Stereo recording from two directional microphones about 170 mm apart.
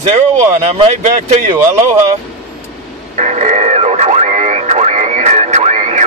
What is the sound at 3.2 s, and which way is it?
Radio, 45° right (ahead or behind).